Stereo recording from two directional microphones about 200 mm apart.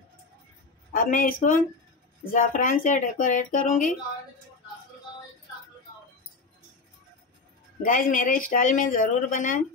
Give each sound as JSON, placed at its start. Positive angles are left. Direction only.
{"t": 0.9, "sound": "speech", "side_deg": 40}
{"t": 7.8, "sound": "speech", "side_deg": 40}